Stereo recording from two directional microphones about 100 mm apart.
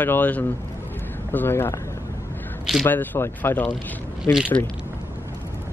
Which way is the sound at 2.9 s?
20° left (ahead or behind).